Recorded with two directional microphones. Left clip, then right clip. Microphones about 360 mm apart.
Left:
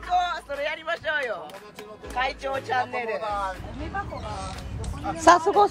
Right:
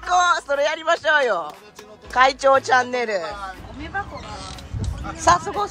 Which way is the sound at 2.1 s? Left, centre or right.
Centre.